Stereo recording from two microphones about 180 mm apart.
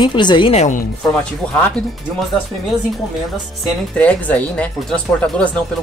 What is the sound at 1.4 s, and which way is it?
Speech, 10° left (ahead or behind).